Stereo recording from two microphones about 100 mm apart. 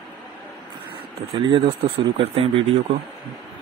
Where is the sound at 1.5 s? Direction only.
65° right (ahead or behind).